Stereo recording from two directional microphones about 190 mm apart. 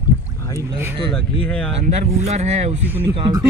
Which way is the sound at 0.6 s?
10° right (ahead or behind).